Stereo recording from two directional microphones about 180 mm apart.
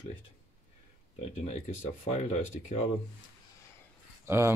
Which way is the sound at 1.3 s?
40° left (ahead or behind).